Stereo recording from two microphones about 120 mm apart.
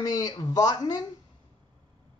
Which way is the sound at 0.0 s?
30° left (ahead or behind).